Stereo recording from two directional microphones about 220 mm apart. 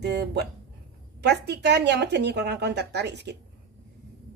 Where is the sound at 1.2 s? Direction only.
50° right (ahead or behind).